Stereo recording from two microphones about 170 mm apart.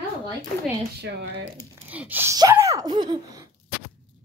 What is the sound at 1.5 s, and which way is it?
Speech, 10° right (ahead or behind).